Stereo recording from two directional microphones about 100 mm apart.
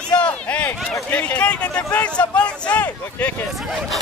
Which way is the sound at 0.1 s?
10° left (ahead or behind).